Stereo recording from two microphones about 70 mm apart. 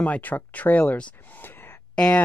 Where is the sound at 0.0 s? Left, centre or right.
Left.